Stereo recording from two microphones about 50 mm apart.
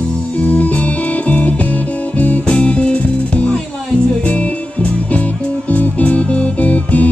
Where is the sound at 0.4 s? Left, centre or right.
Left.